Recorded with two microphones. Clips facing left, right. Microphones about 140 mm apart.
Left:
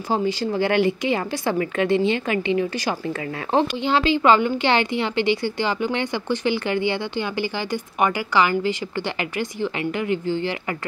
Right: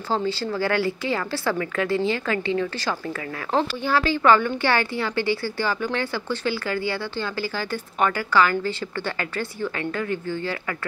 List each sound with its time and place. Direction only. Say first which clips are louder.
0.1 s a woman's voice: left 2 dB; 15° left (ahead or behind)